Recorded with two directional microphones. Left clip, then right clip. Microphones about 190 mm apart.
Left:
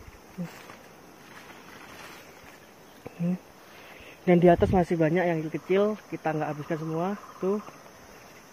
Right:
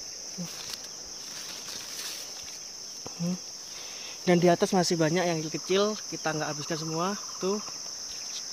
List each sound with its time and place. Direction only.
4.2 s speech: 20° right (ahead or behind)